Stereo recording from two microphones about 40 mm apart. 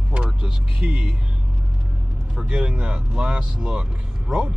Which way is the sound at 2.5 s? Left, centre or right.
Right.